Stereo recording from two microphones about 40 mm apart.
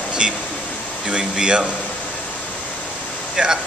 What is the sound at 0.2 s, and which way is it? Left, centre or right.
A man's voice, right.